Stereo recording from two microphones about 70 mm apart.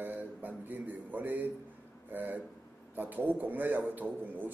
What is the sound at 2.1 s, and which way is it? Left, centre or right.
A man's voice, right.